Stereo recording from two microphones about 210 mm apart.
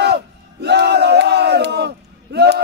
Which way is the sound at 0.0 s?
50° right (ahead or behind).